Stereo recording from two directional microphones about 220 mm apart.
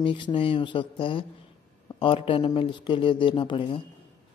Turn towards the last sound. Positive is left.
turn(degrees=25)  # may be behind; listen again after turning